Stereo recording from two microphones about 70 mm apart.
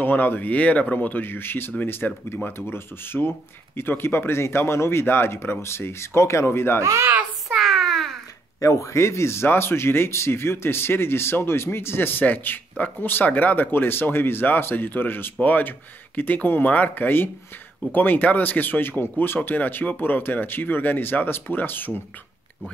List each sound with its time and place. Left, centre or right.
0.0 s speech: left
6.8 s speech: right
7.4 s a sound: centre
8.5 s speech: left